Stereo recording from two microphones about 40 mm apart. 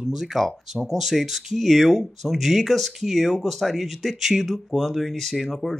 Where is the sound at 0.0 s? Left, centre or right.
Centre.